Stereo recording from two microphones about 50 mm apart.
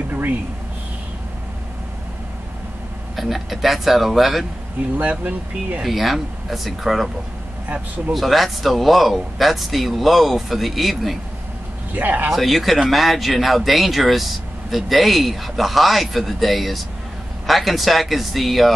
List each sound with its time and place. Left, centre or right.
0.1 s a sound: right
3.2 s speech: centre
5.9 s speech: centre
8.1 s speech: centre
11.9 s speech: right
12.3 s speech: centre